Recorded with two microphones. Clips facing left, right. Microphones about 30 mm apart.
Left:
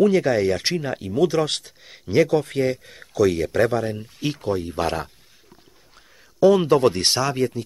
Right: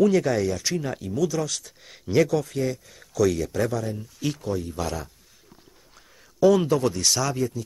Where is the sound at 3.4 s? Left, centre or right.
Left.